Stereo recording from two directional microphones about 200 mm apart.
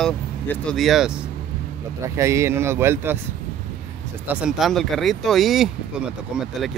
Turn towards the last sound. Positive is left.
turn(degrees=0)  # may be behind; listen again after turning